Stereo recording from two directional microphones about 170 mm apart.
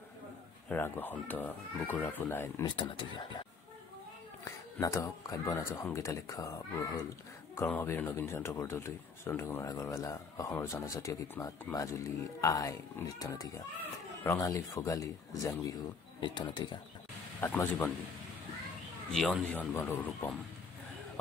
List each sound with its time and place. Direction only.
0.7 s speech: 10° left (ahead or behind)
2.6 s speech: 30° left (ahead or behind)
4.5 s speech: 15° left (ahead or behind)
17.4 s speech: 10° left (ahead or behind)
19.1 s speech: centre (ahead or behind)
19.7 s speech: 15° left (ahead or behind)